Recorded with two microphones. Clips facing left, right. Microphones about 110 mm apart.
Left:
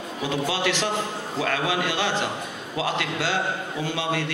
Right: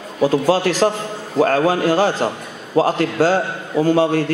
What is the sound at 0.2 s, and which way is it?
A man's voice, 40° right (ahead or behind).